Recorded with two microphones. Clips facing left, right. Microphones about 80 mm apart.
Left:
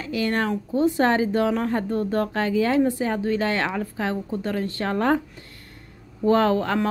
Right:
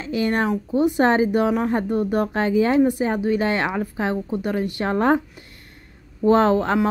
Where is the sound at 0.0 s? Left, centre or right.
Right.